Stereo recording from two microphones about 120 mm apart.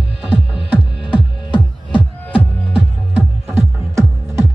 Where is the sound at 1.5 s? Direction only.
45° left (ahead or behind).